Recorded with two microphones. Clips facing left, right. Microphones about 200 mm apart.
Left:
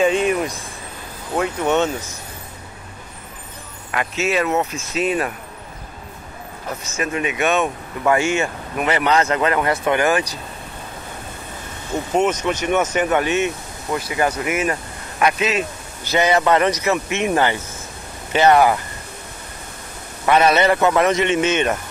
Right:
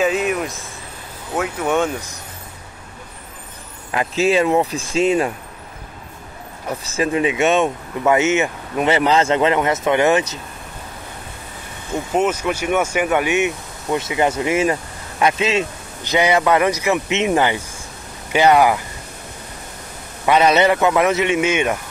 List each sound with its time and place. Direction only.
0.0 s speech: 5° right (ahead or behind)
3.9 s speech: 30° right (ahead or behind)
7.0 s speech: 25° right (ahead or behind)
12.1 s speech: 5° right (ahead or behind); by 15.6 s 25° right (ahead or behind)
16.0 s speech: 15° right (ahead or behind)
20.2 s speech: 15° right (ahead or behind)